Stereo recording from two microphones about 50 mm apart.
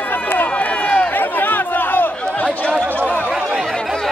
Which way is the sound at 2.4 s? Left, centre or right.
Left.